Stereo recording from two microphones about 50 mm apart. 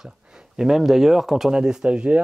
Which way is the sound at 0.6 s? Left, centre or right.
Centre.